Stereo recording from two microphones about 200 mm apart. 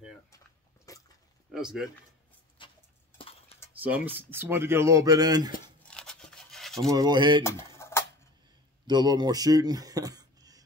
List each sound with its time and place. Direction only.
0.9 s a sound: 15° left (ahead or behind)
1.5 s speech: 5° right (ahead or behind)
2.6 s a sound: 25° left (ahead or behind)
3.2 s cutlery: 30° left (ahead or behind)
3.7 s speech: 10° right (ahead or behind)
5.9 s a sound: 5° left (ahead or behind)
6.9 s speech: 20° right (ahead or behind)
7.4 s cutlery: 15° left (ahead or behind)
8.8 s speech: 20° right (ahead or behind)